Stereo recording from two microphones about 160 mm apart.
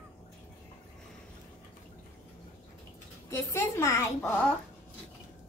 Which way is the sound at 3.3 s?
20° left (ahead or behind).